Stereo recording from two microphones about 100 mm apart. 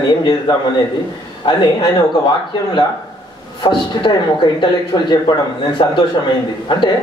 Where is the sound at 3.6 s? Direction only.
50° left (ahead or behind).